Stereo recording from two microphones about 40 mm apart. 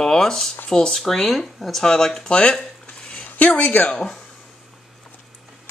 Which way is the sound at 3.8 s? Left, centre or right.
Left.